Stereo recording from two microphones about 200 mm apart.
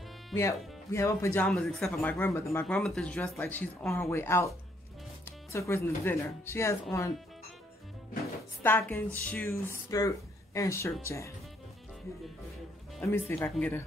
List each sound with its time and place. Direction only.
0.9 s speech: 15° left (ahead or behind)
8.6 s speech: 10° left (ahead or behind)
13.0 s speech: 15° left (ahead or behind)